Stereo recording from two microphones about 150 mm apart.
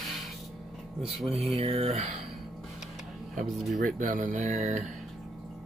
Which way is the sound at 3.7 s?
60° right (ahead or behind).